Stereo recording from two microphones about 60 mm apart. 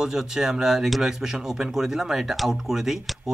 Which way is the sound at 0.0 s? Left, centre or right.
Centre.